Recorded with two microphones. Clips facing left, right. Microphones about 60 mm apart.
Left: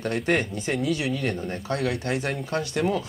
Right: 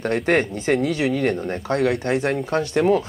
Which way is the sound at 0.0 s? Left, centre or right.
Right.